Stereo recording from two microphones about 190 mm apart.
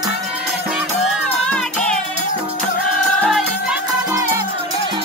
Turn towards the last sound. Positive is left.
turn(degrees=-15)  # may be behind; listen again after turning